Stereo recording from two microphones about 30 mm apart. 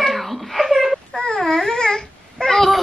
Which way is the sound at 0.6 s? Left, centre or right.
Centre.